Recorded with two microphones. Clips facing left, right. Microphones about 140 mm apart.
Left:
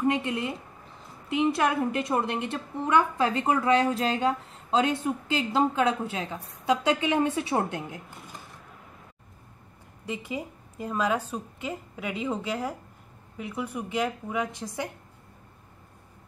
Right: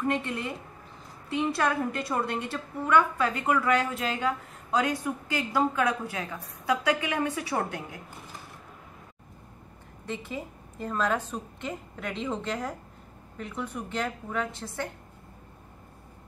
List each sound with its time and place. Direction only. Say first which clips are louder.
0.0 s a woman's voice: left 3 dB; 15° left (ahead or behind)
10.0 s a woman's voice: left 2 dB; 10° left (ahead or behind)